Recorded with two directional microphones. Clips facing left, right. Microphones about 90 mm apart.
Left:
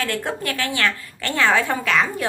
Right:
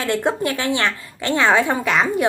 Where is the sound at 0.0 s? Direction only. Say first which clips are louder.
Right 5 dB; 20° right (ahead or behind).